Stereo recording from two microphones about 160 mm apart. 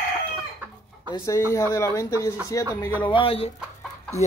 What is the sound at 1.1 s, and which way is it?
Speech, 20° left (ahead or behind).